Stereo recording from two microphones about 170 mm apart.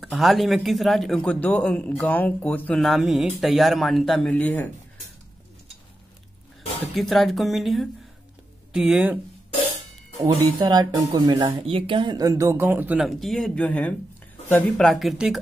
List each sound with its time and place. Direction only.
0.0 s a man's voice: centre (ahead or behind)
7.0 s a man's voice: centre (ahead or behind)
10.2 s a man's voice: 25° right (ahead or behind); by 15.4 s centre (ahead or behind)